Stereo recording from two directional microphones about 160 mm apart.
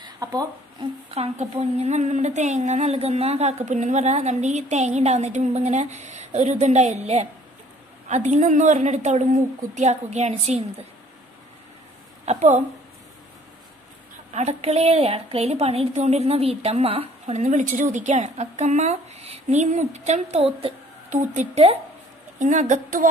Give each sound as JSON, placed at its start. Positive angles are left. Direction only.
{"t": 0.0, "sound": "a sound", "side_deg": -20}
{"t": 1.1, "sound": "a woman's voice", "side_deg": -40}
{"t": 12.3, "sound": "a woman's voice", "side_deg": -45}
{"t": 14.3, "sound": "a woman's voice", "side_deg": -45}